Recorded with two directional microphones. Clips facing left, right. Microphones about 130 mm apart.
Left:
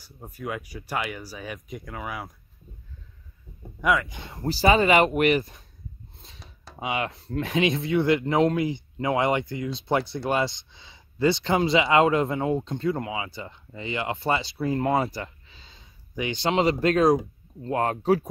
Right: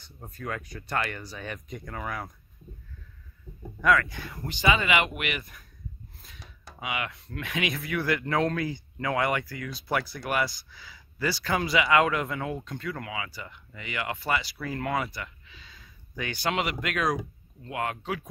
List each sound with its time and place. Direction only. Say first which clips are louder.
0.0 s speech: left 3 dB; 10° left (ahead or behind)
3.8 s speech: even; 15° left (ahead or behind); by 18.3 s 40° left (ahead or behind)